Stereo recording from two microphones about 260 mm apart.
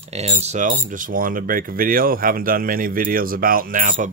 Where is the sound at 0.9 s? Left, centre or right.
Right.